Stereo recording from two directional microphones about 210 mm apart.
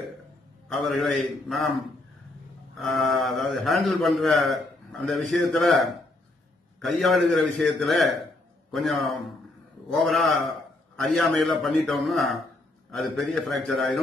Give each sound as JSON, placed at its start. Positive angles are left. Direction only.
{"t": 0.7, "sound": "a man's voice", "side_deg": 0}
{"t": 3.0, "sound": "a man's voice", "side_deg": 0}
{"t": 6.8, "sound": "a man's voice", "side_deg": 0}